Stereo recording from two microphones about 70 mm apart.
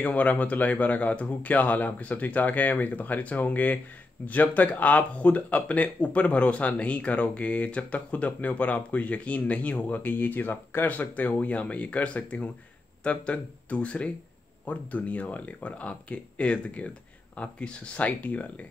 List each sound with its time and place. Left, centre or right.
0.0 s speech: left